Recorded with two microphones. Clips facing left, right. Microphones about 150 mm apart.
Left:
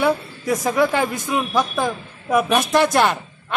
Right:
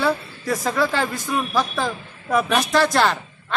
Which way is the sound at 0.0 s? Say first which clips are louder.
Left 3 dB; 20° left (ahead or behind).